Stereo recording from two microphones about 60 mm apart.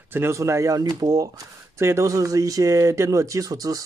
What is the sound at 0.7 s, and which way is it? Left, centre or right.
Speech, right.